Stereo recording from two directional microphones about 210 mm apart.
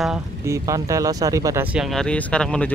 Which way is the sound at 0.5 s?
15° right (ahead or behind).